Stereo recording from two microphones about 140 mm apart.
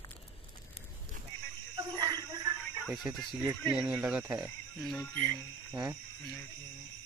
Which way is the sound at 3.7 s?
5° right (ahead or behind).